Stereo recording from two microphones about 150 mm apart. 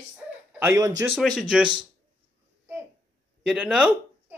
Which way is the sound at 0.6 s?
20° right (ahead or behind).